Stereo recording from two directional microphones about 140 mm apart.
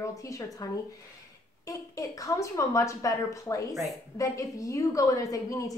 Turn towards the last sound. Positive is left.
turn(degrees=25)  # may be behind; listen again after turning